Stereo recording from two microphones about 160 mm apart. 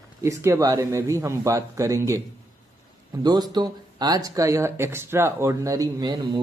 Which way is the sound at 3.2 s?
25° right (ahead or behind).